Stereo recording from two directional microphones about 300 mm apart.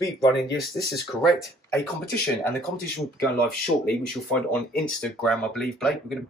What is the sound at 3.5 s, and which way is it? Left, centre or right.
Speech, left.